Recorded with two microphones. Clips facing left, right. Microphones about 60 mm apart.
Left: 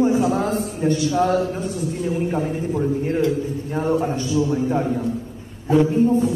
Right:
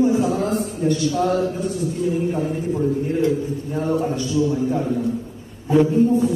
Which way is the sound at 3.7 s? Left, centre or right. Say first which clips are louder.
Left 1 dB; left.